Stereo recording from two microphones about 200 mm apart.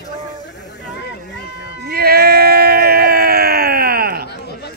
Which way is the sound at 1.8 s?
50° right (ahead or behind).